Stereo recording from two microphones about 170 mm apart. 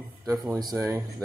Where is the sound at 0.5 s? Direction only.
20° right (ahead or behind).